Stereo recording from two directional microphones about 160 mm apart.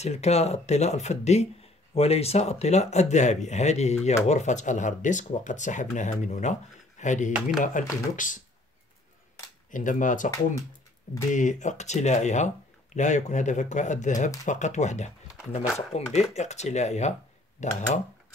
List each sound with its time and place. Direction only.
0.0 s speech: 45° left (ahead or behind)
9.7 s speech: 55° left (ahead or behind)
11.3 s speech: 50° left (ahead or behind)